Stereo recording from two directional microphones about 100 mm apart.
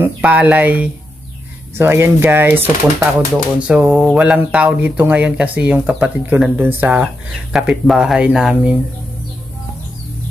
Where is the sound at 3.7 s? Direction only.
15° right (ahead or behind).